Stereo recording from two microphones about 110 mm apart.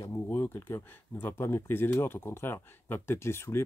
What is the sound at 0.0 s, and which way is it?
Speech, 20° left (ahead or behind).